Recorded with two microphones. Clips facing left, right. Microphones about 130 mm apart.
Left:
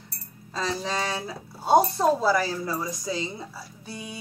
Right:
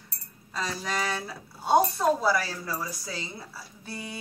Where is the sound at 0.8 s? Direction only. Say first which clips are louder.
Left 2 dB; 25° left (ahead or behind).